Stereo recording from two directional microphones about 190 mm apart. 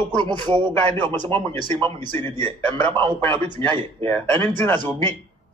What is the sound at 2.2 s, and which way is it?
Speech, 25° right (ahead or behind).